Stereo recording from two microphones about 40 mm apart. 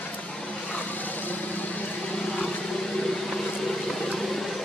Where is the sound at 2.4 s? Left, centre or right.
Centre.